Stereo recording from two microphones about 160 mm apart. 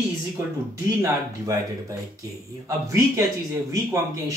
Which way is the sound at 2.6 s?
20° right (ahead or behind).